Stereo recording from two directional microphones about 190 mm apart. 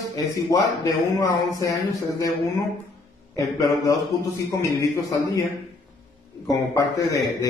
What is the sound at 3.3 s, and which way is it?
A man's voice, 15° left (ahead or behind).